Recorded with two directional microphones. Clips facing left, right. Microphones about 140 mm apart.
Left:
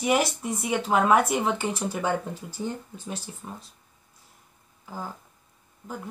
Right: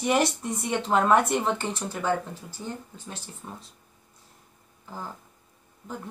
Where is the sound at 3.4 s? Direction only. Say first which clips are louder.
Right 1 dB; 5° left (ahead or behind).